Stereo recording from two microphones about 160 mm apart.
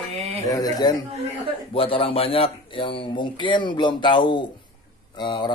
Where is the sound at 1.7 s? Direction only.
35° left (ahead or behind).